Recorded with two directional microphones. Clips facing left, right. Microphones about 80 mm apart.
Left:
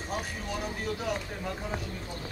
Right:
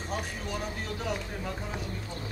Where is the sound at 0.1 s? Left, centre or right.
Centre.